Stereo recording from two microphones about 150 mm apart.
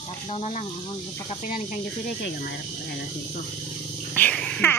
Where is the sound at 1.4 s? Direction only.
65° left (ahead or behind).